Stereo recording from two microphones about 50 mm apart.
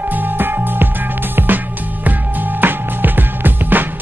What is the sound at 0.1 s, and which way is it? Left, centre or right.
Music, right.